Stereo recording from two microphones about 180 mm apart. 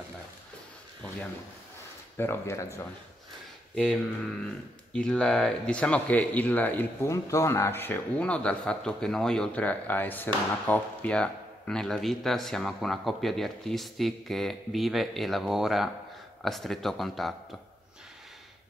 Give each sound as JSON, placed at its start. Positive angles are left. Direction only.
{"t": 1.0, "sound": "speech", "side_deg": 5}
{"t": 3.7, "sound": "speech", "side_deg": 5}